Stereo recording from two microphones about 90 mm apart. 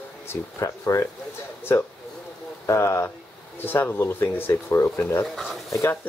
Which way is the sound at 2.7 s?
30° left (ahead or behind).